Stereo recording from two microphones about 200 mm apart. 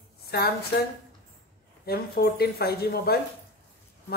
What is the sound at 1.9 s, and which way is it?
Speech, 50° left (ahead or behind).